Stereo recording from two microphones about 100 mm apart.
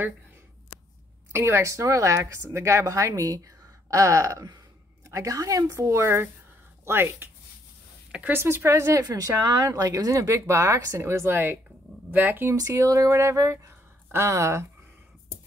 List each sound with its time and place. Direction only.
1.3 s speech: 25° right (ahead or behind)
12.5 s speech: 30° right (ahead or behind)